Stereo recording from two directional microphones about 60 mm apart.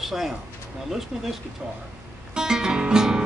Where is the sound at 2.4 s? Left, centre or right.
Centre.